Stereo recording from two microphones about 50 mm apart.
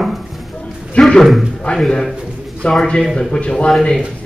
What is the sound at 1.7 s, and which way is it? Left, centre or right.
Speech, left.